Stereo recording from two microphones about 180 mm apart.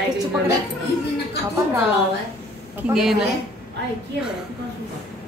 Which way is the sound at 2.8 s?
5° right (ahead or behind).